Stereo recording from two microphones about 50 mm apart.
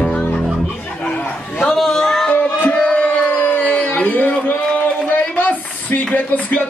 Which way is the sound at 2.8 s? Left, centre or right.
Left.